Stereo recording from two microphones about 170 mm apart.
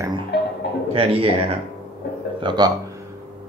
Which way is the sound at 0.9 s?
35° right (ahead or behind).